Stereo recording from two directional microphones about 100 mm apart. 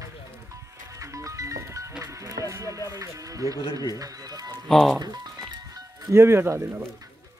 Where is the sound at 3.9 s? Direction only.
35° right (ahead or behind).